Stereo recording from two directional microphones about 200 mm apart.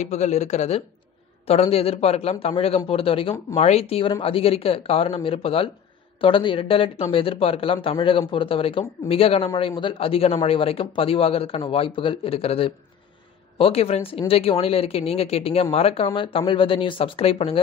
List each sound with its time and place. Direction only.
0.0 s speech: 35° left (ahead or behind)